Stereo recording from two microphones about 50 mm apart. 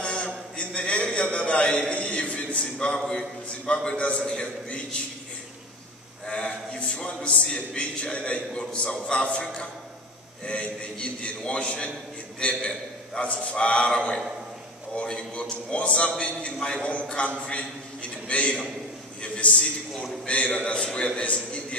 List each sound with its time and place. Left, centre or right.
0.0 s a sound: left
3.6 s a man's voice: left
6.2 s a man's voice: left
10.4 s a man's voice: left
19.2 s a sound: left
20.2 s a man's voice: left